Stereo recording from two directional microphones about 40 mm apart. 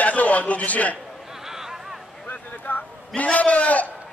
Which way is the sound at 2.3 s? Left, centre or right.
Left.